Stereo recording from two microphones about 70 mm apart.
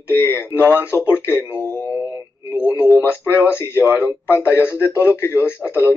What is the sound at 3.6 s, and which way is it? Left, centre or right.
Speech, left.